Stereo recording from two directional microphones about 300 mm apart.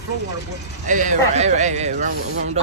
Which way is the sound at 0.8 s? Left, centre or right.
Right.